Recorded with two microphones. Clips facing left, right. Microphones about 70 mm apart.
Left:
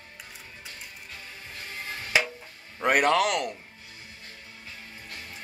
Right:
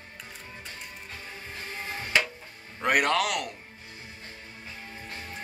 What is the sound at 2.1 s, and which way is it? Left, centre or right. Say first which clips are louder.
Music: left 1 dB; centre.